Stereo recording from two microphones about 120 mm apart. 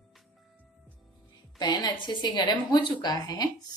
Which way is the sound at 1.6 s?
35° left (ahead or behind).